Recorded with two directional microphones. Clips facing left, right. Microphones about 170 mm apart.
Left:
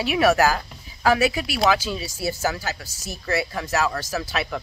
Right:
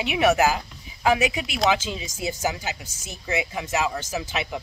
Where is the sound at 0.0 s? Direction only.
20° right (ahead or behind).